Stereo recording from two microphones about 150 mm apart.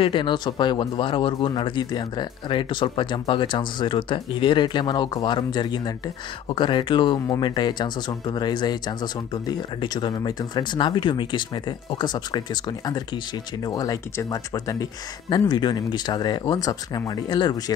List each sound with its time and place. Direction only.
0.0 s speech: 35° left (ahead or behind)